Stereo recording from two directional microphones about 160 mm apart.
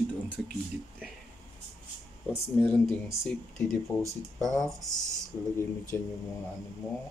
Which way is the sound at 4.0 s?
20° right (ahead or behind).